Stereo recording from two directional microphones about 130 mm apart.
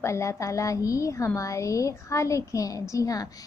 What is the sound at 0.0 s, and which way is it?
A woman's voice, 20° left (ahead or behind).